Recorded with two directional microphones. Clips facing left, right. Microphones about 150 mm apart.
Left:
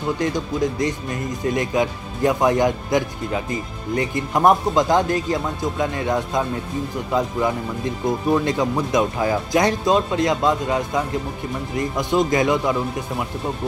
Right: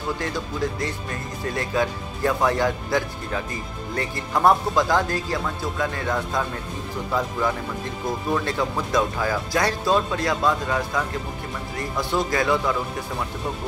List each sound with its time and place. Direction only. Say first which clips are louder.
0.2 s speech: left 5 dB; 20° left (ahead or behind)